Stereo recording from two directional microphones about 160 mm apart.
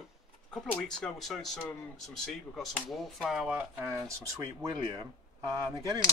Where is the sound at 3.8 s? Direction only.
20° right (ahead or behind).